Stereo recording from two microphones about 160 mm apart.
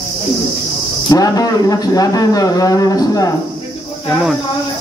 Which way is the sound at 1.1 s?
25° left (ahead or behind).